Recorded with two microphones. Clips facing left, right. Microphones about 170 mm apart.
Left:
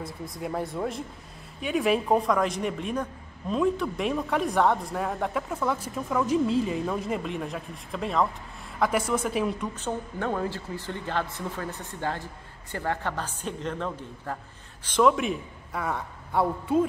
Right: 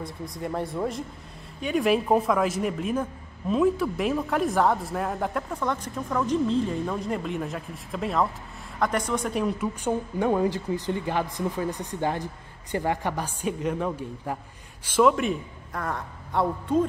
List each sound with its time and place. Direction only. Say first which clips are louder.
0.0 s a man's voice: right 1 dB; centre (ahead or behind)
9.8 s a woman's voice: right 5 dB; 15° right (ahead or behind); by 16.8 s 5° left (ahead or behind)